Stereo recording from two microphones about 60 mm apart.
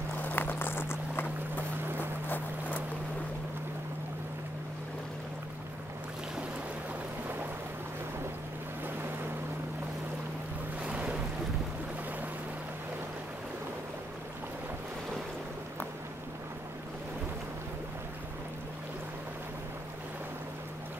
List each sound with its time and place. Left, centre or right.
0.2 s a sound: left
2.2 s clip-clop: left
10.8 s boat: right